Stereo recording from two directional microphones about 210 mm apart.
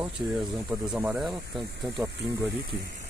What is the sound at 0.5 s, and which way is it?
Speech, centre (ahead or behind).